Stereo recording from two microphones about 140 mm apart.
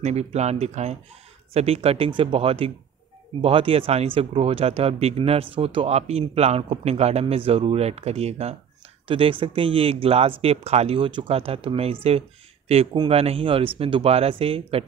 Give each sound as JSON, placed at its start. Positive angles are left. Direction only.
{"t": 0.0, "sound": "speech", "side_deg": -50}